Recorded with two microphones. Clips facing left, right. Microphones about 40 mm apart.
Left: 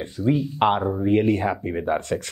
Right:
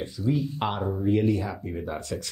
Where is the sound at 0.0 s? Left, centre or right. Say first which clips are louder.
Left 4 dB; left.